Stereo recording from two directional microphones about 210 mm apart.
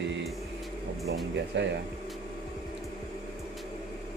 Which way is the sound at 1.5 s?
60° right (ahead or behind).